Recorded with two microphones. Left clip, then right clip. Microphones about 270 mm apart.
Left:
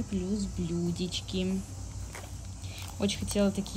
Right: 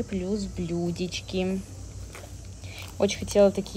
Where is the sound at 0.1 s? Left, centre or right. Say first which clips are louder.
Right 4 dB; centre.